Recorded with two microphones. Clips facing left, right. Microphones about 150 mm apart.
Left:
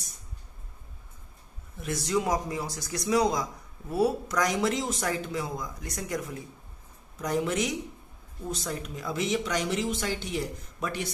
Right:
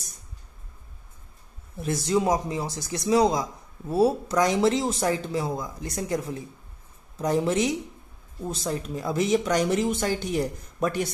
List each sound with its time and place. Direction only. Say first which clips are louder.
1.8 s speech: right 4 dB; 30° right (ahead or behind); by 11.1 s 45° right (ahead or behind)